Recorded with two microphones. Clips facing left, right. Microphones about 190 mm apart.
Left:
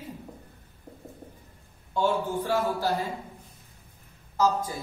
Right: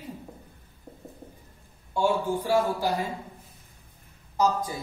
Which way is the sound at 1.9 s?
10° right (ahead or behind).